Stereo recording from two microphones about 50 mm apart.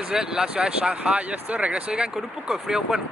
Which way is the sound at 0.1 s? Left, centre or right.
Centre.